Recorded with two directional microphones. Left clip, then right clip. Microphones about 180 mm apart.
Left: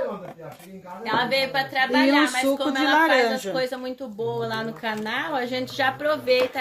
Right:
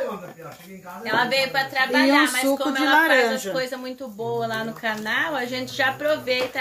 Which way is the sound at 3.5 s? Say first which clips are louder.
Left 1 dB; 60° left (ahead or behind).